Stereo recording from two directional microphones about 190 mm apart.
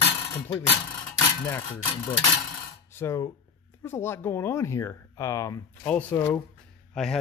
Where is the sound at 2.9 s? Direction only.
15° left (ahead or behind).